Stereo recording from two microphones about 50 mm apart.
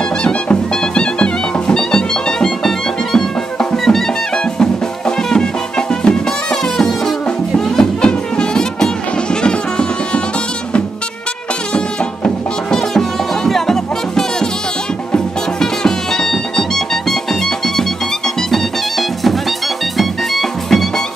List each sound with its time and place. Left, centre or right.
0.2 s music: left
13.5 s music: centre